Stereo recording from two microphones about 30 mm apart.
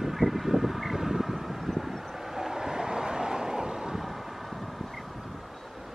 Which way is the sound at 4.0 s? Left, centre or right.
Centre.